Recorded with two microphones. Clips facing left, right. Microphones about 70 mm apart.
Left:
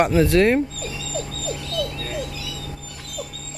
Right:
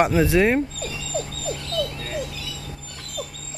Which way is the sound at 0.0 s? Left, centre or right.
Centre.